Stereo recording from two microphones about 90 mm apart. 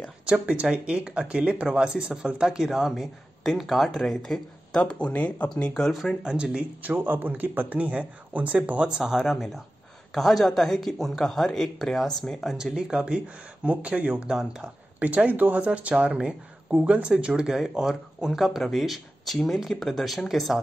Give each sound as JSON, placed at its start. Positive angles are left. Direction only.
{"t": 0.2, "sound": "speech", "side_deg": -10}
{"t": 5.8, "sound": "speech", "side_deg": 5}
{"t": 6.2, "sound": "speech", "side_deg": -10}
{"t": 15.0, "sound": "speech", "side_deg": -15}